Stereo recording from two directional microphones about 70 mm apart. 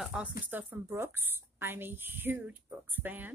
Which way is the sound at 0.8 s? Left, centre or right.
Right.